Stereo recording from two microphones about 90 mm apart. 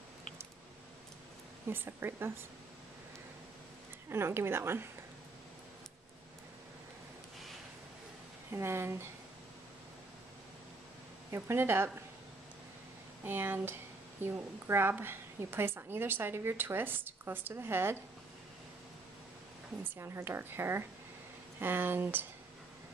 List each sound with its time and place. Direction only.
1.7 s a woman's voice: 25° right (ahead or behind)
4.1 s a woman's voice: 30° right (ahead or behind)
8.5 s a woman's voice: 30° right (ahead or behind)
11.3 s a woman's voice: 30° right (ahead or behind)
13.2 s a woman's voice: 25° right (ahead or behind)
19.8 s a woman's voice: 30° right (ahead or behind)